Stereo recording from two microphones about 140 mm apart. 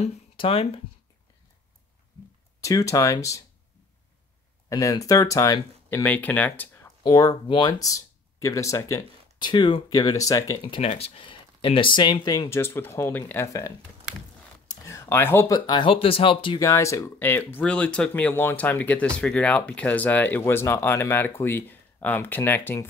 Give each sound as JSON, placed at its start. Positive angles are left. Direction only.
{"t": 0.4, "sound": "speech", "side_deg": 40}
{"t": 2.6, "sound": "speech", "side_deg": 20}
{"t": 4.6, "sound": "speech", "side_deg": 25}
{"t": 7.0, "sound": "speech", "side_deg": 30}
{"t": 10.8, "sound": "speech", "side_deg": 45}
{"t": 16.5, "sound": "speech", "side_deg": 20}